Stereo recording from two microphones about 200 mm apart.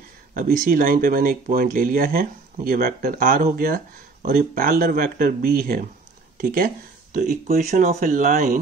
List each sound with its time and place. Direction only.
0.4 s speech: 45° right (ahead or behind)